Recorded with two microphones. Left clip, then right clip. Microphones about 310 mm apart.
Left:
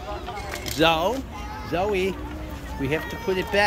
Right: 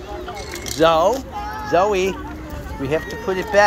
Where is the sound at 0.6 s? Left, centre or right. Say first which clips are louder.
Right 6 dB; centre.